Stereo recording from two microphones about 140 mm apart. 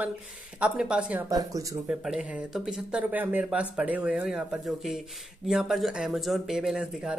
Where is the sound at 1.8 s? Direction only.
5° right (ahead or behind).